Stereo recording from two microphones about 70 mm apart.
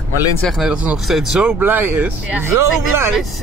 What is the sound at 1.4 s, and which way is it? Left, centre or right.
Speech, right.